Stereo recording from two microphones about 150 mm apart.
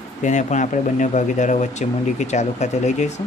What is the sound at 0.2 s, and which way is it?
Speech, 55° left (ahead or behind).